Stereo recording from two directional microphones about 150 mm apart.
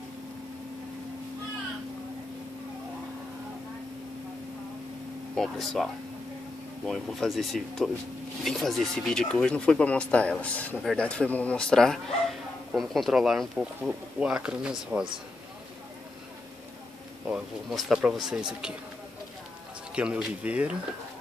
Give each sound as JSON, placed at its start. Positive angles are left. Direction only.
{"t": 5.3, "sound": "speech", "side_deg": 0}
{"t": 6.9, "sound": "speech", "side_deg": 0}
{"t": 17.3, "sound": "speech", "side_deg": 0}
{"t": 20.0, "sound": "speech", "side_deg": -10}